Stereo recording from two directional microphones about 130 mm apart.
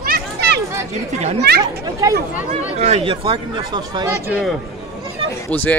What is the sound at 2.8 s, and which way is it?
Speech, 50° right (ahead or behind).